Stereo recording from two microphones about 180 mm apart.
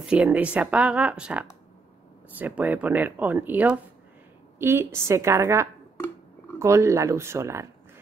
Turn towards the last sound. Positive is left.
turn(degrees=-15)  # may be behind; listen again after turning